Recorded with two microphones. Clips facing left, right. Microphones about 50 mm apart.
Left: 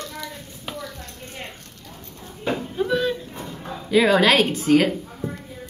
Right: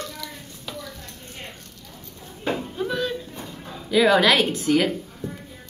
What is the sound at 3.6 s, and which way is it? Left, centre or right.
Dog, left.